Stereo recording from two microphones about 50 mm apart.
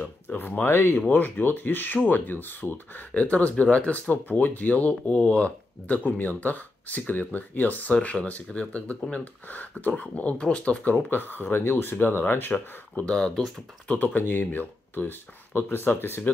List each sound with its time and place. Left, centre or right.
0.0 s speech: left
1.1 s speech: left
3.1 s speech: left
11.1 s speech: left
12.5 s speech: left
13.1 s speech: centre
13.8 s speech: left